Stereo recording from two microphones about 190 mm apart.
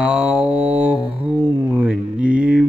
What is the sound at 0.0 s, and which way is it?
Mantra, 5° right (ahead or behind).